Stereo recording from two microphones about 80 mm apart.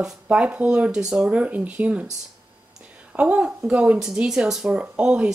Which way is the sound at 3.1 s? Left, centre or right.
Centre.